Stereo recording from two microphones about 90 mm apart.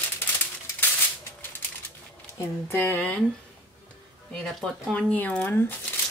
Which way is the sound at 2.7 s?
20° left (ahead or behind).